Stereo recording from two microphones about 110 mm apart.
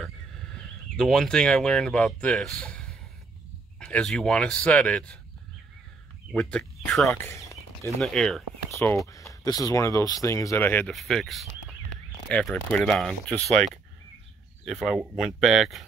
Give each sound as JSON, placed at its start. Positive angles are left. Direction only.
{"t": 0.0, "sound": "a man's voice", "side_deg": 5}
{"t": 6.3, "sound": "speech", "side_deg": 10}
{"t": 7.1, "sound": "a sound", "side_deg": 25}
{"t": 8.0, "sound": "speech", "side_deg": 5}
{"t": 9.0, "sound": "speech", "side_deg": 30}
{"t": 10.9, "sound": "speech", "side_deg": 0}